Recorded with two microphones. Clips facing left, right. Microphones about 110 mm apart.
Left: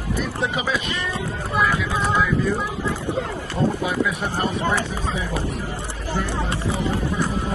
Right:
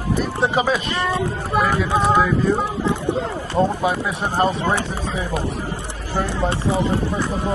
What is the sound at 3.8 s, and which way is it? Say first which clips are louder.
Speech: right 2 dB; 30° right (ahead or behind).